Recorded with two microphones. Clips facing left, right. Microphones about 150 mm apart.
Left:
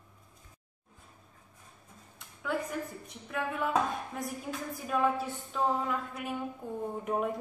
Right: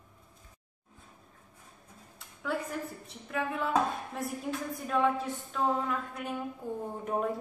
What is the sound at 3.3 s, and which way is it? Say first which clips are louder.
A woman's voice: right 1 dB; 5° left (ahead or behind).